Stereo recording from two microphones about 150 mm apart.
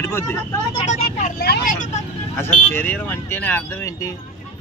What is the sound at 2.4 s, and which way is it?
Speech, 15° left (ahead or behind).